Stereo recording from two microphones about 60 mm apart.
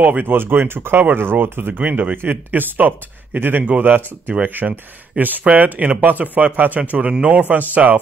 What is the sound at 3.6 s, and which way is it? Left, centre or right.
Speech, right.